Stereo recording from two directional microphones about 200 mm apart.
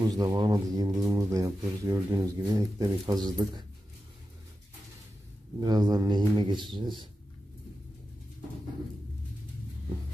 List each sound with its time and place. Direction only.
0.0 s speech: 20° right (ahead or behind)
5.6 s speech: 20° right (ahead or behind)
6.5 s speech: centre (ahead or behind)